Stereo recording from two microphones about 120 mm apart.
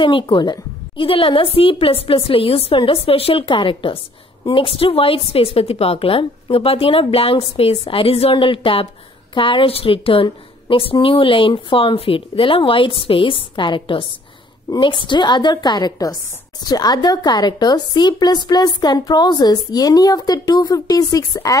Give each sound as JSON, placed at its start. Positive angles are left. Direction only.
{"t": 0.0, "sound": "a woman's voice", "side_deg": 45}